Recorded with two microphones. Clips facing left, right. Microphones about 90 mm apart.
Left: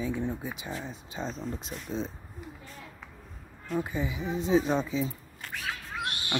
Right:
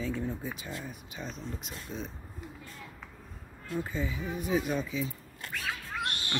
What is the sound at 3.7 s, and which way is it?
Speech, 15° left (ahead or behind).